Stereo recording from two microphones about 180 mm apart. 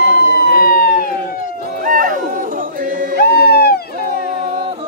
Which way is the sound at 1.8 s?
50° right (ahead or behind).